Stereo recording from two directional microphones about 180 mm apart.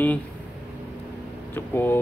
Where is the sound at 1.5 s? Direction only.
10° left (ahead or behind).